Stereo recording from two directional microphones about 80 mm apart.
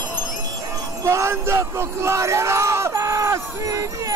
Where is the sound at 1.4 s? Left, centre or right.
Right.